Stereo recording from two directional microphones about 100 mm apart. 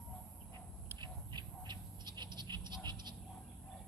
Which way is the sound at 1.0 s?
50° right (ahead or behind).